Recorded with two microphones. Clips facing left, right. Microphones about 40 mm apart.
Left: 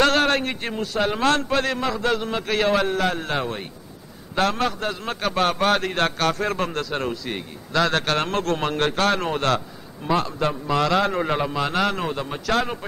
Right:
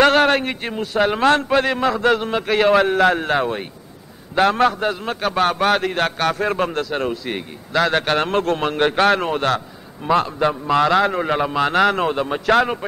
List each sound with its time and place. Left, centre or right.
0.0 s a sound: centre
0.9 s a man's voice: right
2.3 s a man's voice: centre
3.3 s a man's voice: centre
5.0 s a man's voice: centre; by 9.3 s right
9.3 s a man's voice: centre
10.1 s a man's voice: right